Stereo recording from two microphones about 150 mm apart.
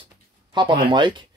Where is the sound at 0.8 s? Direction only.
30° right (ahead or behind).